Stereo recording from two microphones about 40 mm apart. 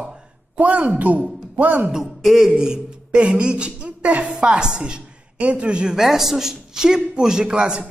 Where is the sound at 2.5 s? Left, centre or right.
Right.